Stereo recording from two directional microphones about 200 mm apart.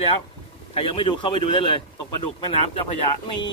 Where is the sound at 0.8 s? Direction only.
25° left (ahead or behind).